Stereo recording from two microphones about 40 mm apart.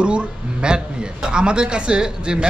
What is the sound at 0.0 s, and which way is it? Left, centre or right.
A man's voice, right.